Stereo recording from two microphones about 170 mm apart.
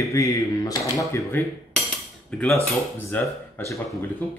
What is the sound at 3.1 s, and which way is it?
Speech, 15° left (ahead or behind).